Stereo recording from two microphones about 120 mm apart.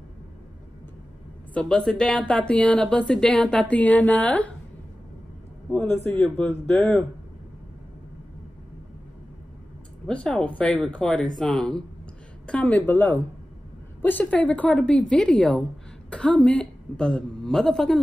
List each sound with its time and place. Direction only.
1.5 s speech: 10° left (ahead or behind)
5.7 s speech: 10° left (ahead or behind)
10.0 s speech: 5° left (ahead or behind)